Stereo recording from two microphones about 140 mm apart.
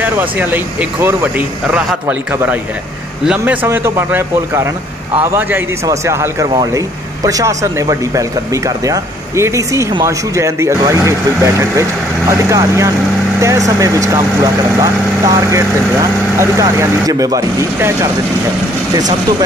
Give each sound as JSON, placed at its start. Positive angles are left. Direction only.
{"t": 0.0, "sound": "speech", "side_deg": -15}
{"t": 3.6, "sound": "speech", "side_deg": -20}